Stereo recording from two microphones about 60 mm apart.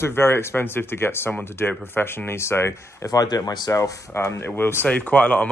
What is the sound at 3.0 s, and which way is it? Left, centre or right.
Speech, left.